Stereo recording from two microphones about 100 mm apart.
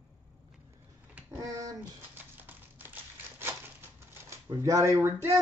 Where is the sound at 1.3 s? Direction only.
35° right (ahead or behind).